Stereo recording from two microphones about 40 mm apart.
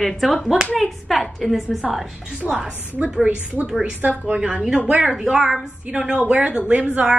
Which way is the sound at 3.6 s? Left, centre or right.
Right.